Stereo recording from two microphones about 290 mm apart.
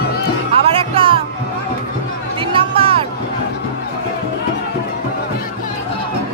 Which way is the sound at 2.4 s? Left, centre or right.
Centre.